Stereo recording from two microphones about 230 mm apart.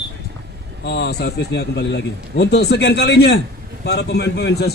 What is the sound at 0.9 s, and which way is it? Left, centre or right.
Speech, left.